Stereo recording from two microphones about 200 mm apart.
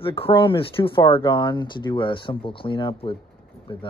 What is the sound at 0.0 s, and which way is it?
Speech, 25° left (ahead or behind).